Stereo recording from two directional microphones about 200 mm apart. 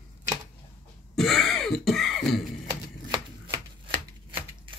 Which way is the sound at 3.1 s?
20° right (ahead or behind).